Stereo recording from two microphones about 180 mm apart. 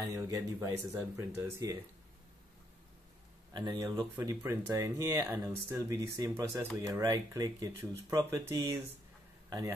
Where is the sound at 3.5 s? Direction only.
25° right (ahead or behind).